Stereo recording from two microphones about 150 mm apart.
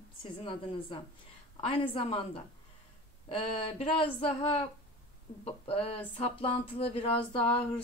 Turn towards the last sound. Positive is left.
turn(degrees=35)  # may be behind; listen again after turning